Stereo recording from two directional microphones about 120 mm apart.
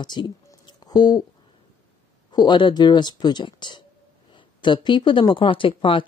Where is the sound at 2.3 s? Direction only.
40° left (ahead or behind).